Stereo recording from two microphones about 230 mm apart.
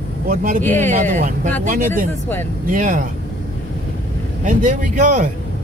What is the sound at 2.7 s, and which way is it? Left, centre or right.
Speech, right.